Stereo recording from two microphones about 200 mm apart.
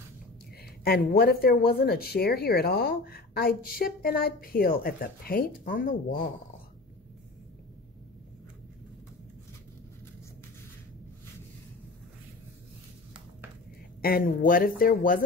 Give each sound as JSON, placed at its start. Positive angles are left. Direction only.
{"t": 0.8, "sound": "speech", "side_deg": 50}
{"t": 14.0, "sound": "speech", "side_deg": 45}